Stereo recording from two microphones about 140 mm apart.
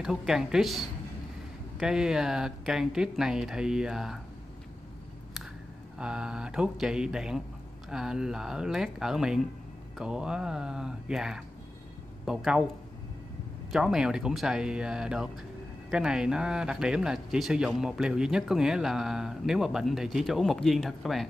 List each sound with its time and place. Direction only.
0.3 s speech: 5° right (ahead or behind)
5.9 s speech: 5° right (ahead or behind)
13.7 s speech: 5° right (ahead or behind)